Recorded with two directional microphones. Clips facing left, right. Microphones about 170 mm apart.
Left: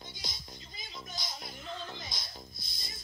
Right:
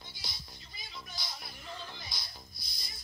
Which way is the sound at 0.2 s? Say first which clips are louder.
Left 4 dB; 20° left (ahead or behind).